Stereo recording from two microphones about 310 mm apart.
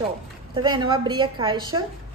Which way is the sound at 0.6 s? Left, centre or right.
Centre.